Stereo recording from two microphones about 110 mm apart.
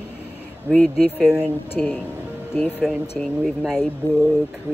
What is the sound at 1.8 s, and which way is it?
Speech, 15° left (ahead or behind).